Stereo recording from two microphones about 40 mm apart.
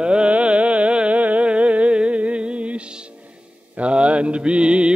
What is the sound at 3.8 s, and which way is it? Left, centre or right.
Mantra, right.